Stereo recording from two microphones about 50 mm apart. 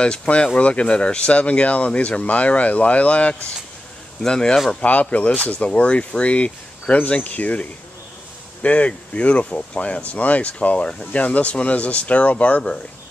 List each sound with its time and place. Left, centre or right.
0.0 s speech: centre
4.8 s speech: left
8.6 s speech: left